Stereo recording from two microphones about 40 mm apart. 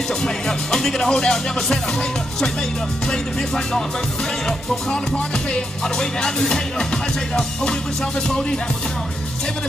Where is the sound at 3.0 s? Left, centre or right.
Centre.